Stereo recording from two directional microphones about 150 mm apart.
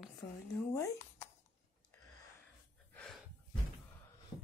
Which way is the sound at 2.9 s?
5° left (ahead or behind).